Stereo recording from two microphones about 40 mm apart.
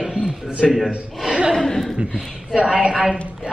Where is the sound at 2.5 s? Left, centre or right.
Right.